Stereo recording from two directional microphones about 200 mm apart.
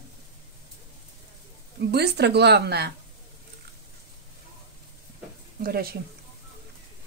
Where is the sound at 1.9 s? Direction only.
55° right (ahead or behind).